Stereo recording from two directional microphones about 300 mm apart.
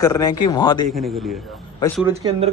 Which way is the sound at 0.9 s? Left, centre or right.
Centre.